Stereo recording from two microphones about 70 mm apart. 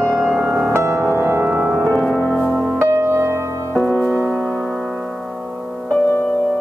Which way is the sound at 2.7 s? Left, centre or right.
Right.